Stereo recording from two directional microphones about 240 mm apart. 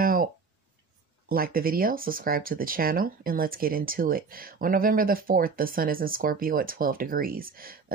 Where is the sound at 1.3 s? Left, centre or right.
Right.